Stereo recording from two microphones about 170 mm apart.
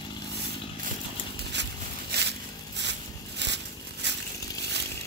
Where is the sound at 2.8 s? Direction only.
90° right.